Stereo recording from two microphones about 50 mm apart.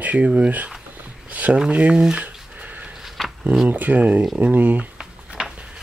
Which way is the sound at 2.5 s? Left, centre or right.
Right.